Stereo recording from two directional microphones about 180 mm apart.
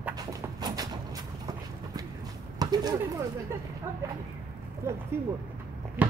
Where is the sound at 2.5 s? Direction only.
20° right (ahead or behind).